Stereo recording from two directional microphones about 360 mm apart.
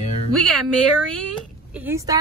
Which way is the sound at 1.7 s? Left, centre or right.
Centre.